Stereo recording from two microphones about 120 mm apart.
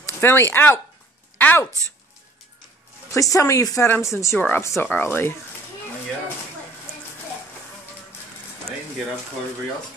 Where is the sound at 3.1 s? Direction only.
25° left (ahead or behind).